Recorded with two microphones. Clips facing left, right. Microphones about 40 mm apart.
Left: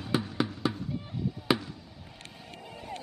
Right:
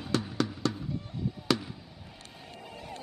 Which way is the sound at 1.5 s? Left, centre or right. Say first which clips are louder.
Left 1 dB; left.